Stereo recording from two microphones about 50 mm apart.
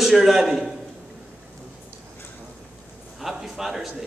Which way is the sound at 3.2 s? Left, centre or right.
Centre.